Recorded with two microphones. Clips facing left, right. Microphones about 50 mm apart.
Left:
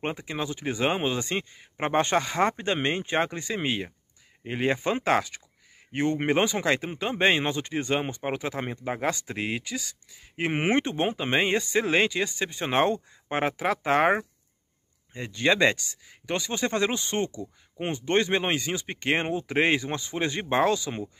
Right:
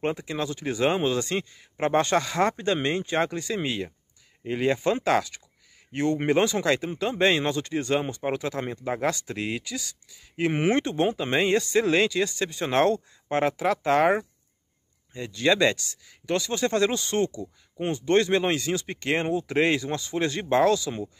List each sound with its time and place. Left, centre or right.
0.0 s speech: left